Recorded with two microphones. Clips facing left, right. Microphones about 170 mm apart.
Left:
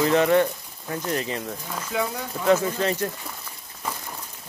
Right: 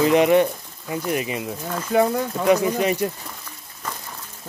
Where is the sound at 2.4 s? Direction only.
15° right (ahead or behind).